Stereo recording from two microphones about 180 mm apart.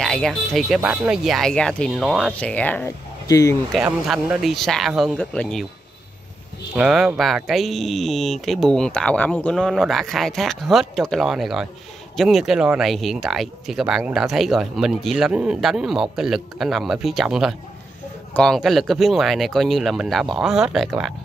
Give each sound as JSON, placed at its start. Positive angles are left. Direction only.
{"t": 0.0, "sound": "speech", "side_deg": 5}
{"t": 3.3, "sound": "speech", "side_deg": 20}
{"t": 3.7, "sound": "speech", "side_deg": -5}
{"t": 6.7, "sound": "speech", "side_deg": -5}